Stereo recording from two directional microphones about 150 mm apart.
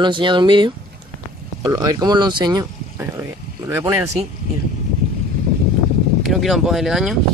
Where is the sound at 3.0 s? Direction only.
15° right (ahead or behind).